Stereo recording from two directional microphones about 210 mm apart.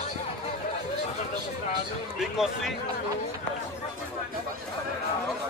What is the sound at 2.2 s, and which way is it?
Speech, centre (ahead or behind).